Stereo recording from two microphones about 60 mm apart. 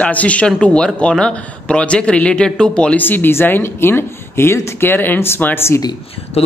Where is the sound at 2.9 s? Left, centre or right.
Left.